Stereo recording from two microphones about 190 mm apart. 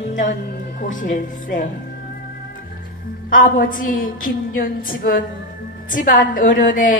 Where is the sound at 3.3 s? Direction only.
45° left (ahead or behind).